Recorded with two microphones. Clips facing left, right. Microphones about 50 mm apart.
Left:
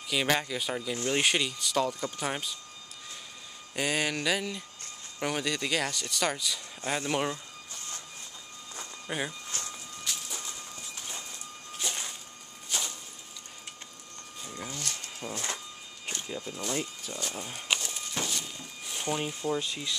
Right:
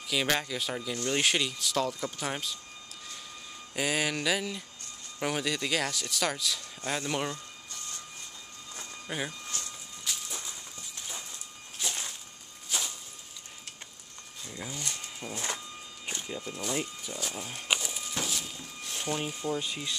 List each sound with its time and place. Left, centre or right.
0.1 s speech: centre
0.9 s speech: centre
1.2 s speech: centre
3.7 s speech: centre
8.7 s a sound: centre
11.8 s music: centre
12.6 s a sound: centre
14.5 s speech: centre
15.1 s a sound: centre
16.1 s speech: centre
17.6 s a sound: centre
19.6 s speech: centre